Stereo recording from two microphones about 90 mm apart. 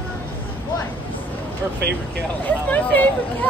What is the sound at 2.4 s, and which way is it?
Speech, 20° left (ahead or behind).